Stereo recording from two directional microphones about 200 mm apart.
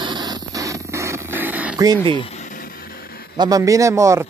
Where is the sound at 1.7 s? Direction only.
20° right (ahead or behind).